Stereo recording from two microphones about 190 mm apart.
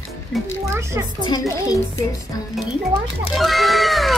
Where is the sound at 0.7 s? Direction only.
15° right (ahead or behind).